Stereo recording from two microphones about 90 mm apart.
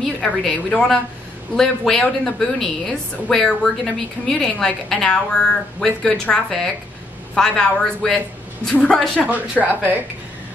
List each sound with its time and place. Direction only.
0.0 s a woman's voice: 5° left (ahead or behind)
9.2 s speech: 15° right (ahead or behind)